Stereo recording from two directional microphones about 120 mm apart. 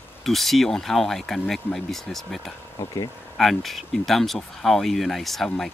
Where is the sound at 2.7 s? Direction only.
35° left (ahead or behind).